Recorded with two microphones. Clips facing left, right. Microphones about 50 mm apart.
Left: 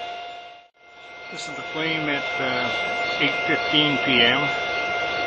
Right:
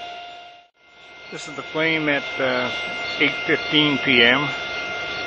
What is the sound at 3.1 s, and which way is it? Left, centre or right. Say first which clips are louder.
Speech: right 4 dB; centre.